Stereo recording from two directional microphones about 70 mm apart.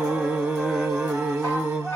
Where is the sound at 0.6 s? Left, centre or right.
Centre.